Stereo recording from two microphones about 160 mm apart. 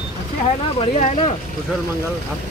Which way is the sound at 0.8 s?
35° left (ahead or behind).